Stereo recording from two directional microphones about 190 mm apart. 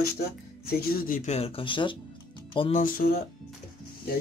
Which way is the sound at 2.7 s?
45° left (ahead or behind).